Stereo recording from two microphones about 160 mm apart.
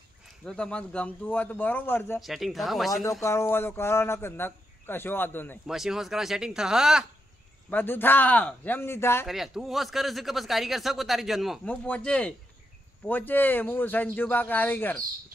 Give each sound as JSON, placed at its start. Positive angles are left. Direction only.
{"t": 0.5, "sound": "speech", "side_deg": 5}
{"t": 2.1, "sound": "speech", "side_deg": 0}
{"t": 2.9, "sound": "speech", "side_deg": 20}
{"t": 5.7, "sound": "speech", "side_deg": 0}
{"t": 7.7, "sound": "speech", "side_deg": 15}
{"t": 9.3, "sound": "speech", "side_deg": 0}